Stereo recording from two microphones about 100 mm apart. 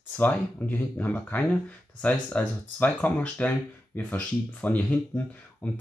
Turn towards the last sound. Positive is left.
turn(degrees=15)  # may be behind; listen again after turning